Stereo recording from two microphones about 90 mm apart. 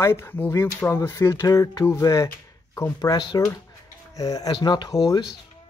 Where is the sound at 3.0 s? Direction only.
50° left (ahead or behind).